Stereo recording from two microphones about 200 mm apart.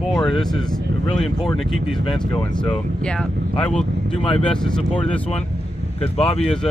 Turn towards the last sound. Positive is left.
turn(degrees=30)  # may be behind; listen again after turning